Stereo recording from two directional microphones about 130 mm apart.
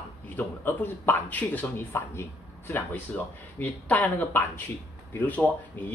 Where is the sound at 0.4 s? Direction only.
15° left (ahead or behind).